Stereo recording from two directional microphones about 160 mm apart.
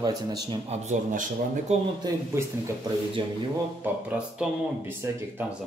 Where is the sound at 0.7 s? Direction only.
45° right (ahead or behind).